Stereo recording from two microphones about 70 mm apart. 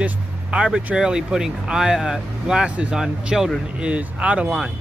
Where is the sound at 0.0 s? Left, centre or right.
Centre.